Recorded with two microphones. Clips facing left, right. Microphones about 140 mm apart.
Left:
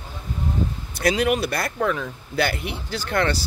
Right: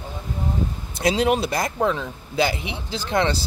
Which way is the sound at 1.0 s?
25° right (ahead or behind).